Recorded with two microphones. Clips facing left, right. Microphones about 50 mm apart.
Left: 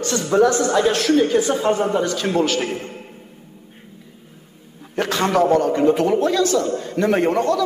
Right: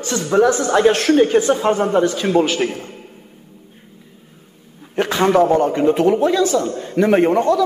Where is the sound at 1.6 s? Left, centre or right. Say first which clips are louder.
Right 3 dB; right.